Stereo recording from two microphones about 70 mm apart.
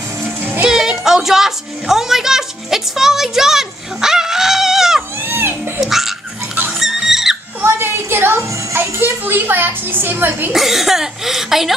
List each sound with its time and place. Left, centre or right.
0.4 s music: right
0.7 s music: centre
5.2 s music: right
5.8 s dog: centre
6.7 s pig: centre
7.6 s a sound: right
8.4 s music: right
10.5 s speech: centre